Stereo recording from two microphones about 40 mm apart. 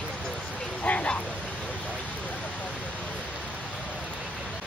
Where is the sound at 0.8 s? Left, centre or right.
Left.